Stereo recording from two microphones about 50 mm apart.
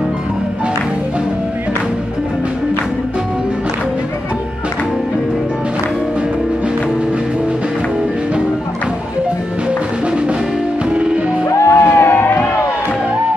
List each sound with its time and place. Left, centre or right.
11.4 s music: left
11.8 s music: left